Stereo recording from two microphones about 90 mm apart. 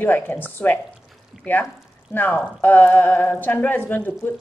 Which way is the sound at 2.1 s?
20° left (ahead or behind).